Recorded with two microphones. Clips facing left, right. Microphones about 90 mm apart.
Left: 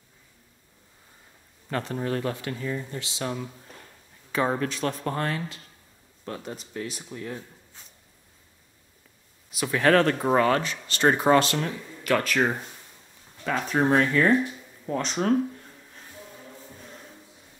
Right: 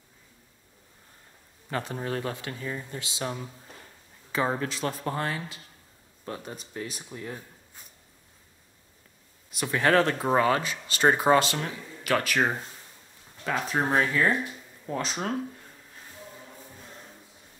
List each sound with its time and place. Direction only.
1.7 s speech: 10° right (ahead or behind)
2.0 s speech: 20° right (ahead or behind)
3.2 s speech: 5° right (ahead or behind)
9.5 s speech: centre (ahead or behind)